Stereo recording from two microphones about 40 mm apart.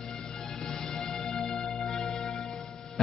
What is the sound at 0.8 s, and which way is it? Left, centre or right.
Music, centre.